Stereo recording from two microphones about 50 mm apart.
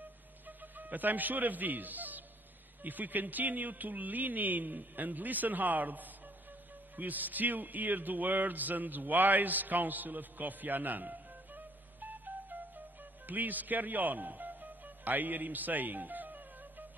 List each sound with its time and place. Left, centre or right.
0.5 s a man's voice: right
7.0 s music: right
13.3 s speech: right